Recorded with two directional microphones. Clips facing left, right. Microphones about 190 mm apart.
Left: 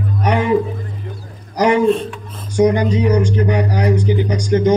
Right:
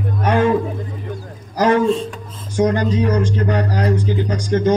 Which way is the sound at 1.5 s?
15° left (ahead or behind).